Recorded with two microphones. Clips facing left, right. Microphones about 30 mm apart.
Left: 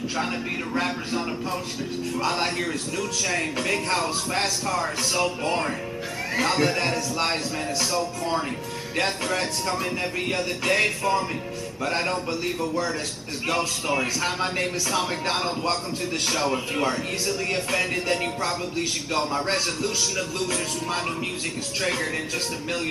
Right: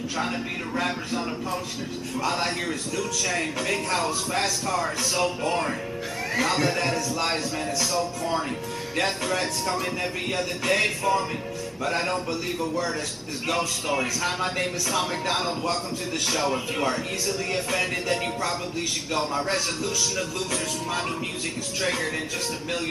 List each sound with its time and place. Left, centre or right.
2.2 s a man's voice: centre
6.5 s speech: centre
8.9 s speech: centre
16.3 s a man's voice: centre
21.8 s speech: centre